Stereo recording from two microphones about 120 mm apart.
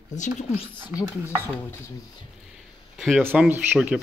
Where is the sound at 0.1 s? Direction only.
90° left.